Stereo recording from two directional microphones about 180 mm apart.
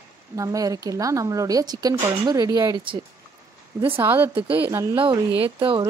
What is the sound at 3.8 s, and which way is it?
Speech, 10° right (ahead or behind).